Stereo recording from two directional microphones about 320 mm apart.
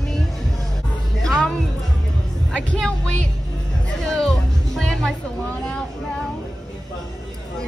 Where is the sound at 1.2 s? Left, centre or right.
Centre.